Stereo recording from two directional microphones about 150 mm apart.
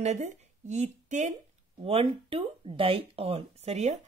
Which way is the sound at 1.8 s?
40° right (ahead or behind).